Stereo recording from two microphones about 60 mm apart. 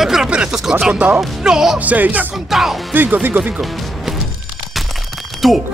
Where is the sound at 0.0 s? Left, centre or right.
Centre.